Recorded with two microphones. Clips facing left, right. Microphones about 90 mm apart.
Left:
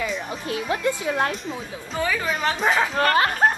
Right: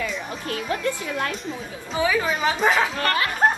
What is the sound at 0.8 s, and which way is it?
Speech, 25° left (ahead or behind).